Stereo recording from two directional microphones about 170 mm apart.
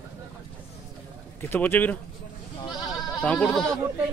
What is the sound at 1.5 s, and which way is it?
Mantra, 10° left (ahead or behind).